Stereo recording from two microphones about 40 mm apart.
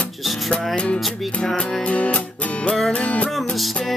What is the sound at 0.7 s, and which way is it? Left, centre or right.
Music, left.